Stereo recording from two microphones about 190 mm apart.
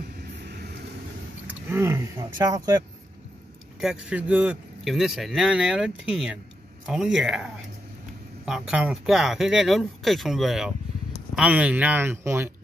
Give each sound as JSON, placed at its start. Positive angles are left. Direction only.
{"t": 0.0, "sound": "vehicle", "side_deg": -55}
{"t": 1.5, "sound": "speech", "side_deg": -15}
{"t": 3.8, "sound": "a man's voice", "side_deg": -5}
{"t": 8.5, "sound": "a man's voice", "side_deg": -5}